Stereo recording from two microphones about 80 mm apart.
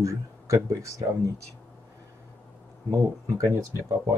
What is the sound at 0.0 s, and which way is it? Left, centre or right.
Speech, right.